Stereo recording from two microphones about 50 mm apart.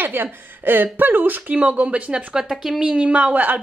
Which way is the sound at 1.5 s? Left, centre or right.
Right.